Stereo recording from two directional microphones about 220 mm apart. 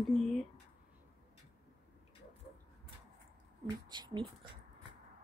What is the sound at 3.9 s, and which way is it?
Speech, 20° right (ahead or behind).